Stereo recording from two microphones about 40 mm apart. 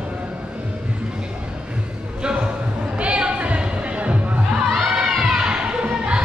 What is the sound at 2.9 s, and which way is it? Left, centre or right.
Music, right.